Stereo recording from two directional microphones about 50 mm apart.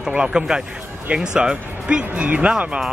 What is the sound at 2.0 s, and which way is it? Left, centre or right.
Speech, right.